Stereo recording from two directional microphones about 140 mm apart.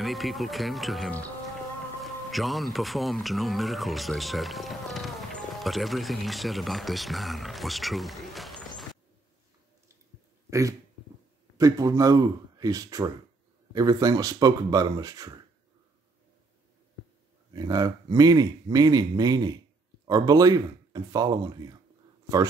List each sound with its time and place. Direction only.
0.0 s speech: centre (ahead or behind)
2.3 s speech: centre (ahead or behind)
11.5 s speech: 25° right (ahead or behind)
17.5 s speech: 30° right (ahead or behind)